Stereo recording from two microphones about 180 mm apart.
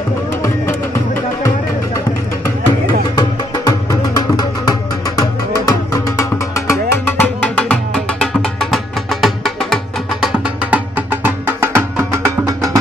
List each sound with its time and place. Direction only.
3.2 s music: 25° left (ahead or behind); by 12.7 s 15° right (ahead or behind)